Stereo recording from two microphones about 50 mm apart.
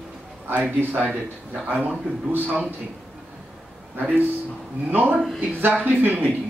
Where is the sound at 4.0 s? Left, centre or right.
Right.